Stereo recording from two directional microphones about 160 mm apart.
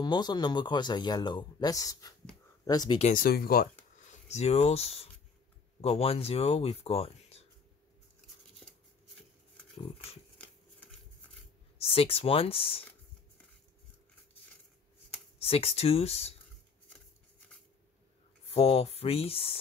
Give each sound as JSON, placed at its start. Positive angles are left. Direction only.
{"t": 0.0, "sound": "speech", "side_deg": 25}
{"t": 3.0, "sound": "speech", "side_deg": 60}
{"t": 4.3, "sound": "speech", "side_deg": 40}
{"t": 11.8, "sound": "speech", "side_deg": 35}
{"t": 15.3, "sound": "speech", "side_deg": 35}
{"t": 18.5, "sound": "speech", "side_deg": 40}